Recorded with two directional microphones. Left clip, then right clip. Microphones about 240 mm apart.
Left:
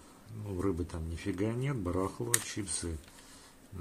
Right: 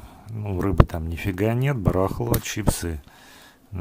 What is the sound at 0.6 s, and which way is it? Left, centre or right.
Speech, right.